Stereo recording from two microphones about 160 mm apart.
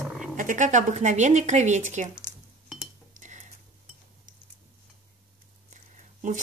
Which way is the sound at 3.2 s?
50° right (ahead or behind).